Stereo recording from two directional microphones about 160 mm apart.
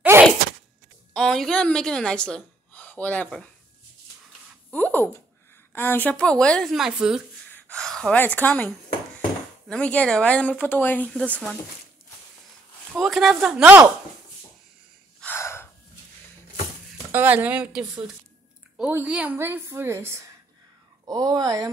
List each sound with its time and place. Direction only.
0.1 s a sound: 15° right (ahead or behind)
1.1 s a woman's voice: 5° left (ahead or behind)
4.6 s a sound: 10° left (ahead or behind)
5.7 s speech: 10° left (ahead or behind); by 7.2 s 5° right (ahead or behind)
7.4 s gasp: 10° left (ahead or behind)
9.7 s speech: 5° left (ahead or behind)
13.0 s speech: centre (ahead or behind)
15.1 s gasp: 15° left (ahead or behind)
17.1 s a woman's voice: 10° right (ahead or behind)